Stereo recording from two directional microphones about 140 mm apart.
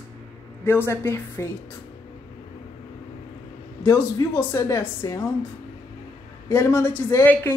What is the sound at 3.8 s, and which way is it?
A woman's voice, 20° left (ahead or behind).